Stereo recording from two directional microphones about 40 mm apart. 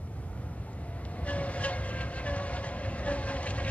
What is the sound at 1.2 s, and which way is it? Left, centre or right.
Train, left.